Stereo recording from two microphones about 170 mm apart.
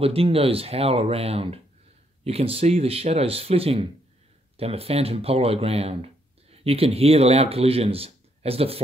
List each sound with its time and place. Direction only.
0.0 s speech: 35° right (ahead or behind)